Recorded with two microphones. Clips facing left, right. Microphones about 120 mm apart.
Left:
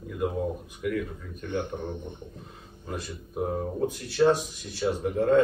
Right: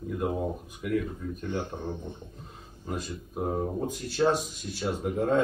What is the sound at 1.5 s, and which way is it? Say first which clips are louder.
Speech: left 4 dB; 20° left (ahead or behind).